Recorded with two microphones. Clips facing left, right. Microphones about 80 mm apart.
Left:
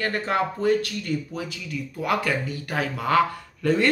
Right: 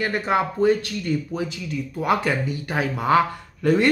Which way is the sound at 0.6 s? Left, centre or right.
Right.